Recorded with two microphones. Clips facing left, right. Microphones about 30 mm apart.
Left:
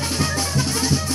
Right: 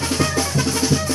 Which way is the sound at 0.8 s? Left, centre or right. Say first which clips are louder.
Right 3 dB; centre.